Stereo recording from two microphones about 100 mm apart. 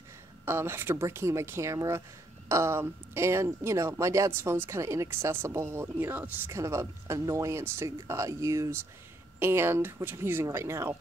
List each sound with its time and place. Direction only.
0.5 s speech: 25° right (ahead or behind)